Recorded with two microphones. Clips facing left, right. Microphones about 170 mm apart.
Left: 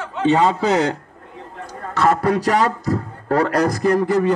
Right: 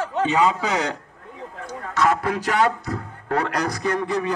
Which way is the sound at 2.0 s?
35° left (ahead or behind).